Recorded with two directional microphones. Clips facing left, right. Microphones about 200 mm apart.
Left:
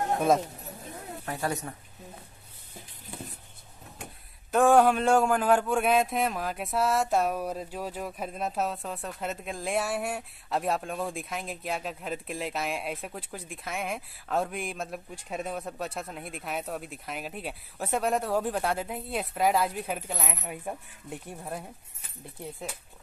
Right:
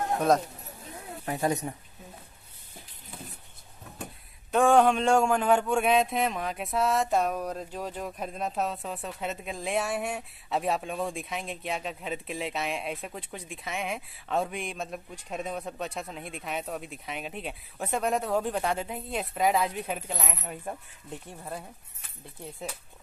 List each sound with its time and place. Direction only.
1.2 s speech: 20° right (ahead or behind)
4.5 s speech: 5° left (ahead or behind)